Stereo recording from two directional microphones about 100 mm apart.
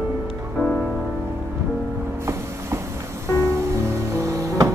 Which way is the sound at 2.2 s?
25° right (ahead or behind).